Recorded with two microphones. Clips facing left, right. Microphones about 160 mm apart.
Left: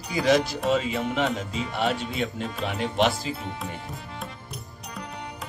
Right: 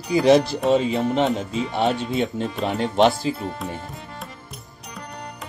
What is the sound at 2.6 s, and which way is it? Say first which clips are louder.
Music: right 6 dB; 30° right (ahead or behind).